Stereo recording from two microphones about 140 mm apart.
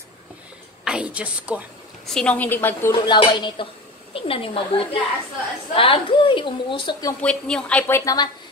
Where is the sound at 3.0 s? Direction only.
35° left (ahead or behind).